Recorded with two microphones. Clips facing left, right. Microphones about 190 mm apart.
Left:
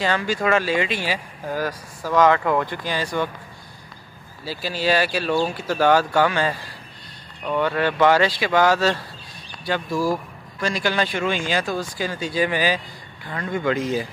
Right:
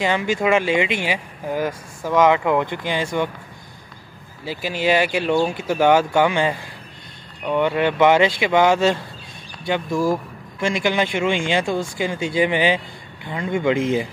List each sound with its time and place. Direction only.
0.0 s speech: 20° right (ahead or behind)
4.5 s speech: 15° right (ahead or behind)
10.6 s speech: 20° right (ahead or behind)
13.7 s speech: 25° right (ahead or behind)